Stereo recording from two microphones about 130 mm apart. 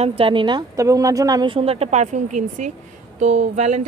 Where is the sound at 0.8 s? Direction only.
25° right (ahead or behind).